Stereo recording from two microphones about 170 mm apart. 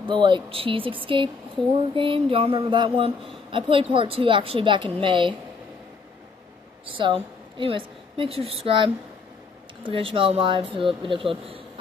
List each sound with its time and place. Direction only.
0.0 s speech: 30° right (ahead or behind)
6.9 s a woman's voice: 30° right (ahead or behind)